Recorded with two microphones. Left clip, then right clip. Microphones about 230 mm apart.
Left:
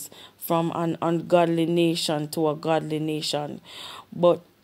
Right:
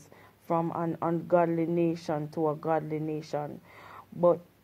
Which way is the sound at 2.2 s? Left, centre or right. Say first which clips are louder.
Left 2 dB; left.